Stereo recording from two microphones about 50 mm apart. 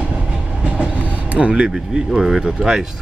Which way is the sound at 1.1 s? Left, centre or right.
Right.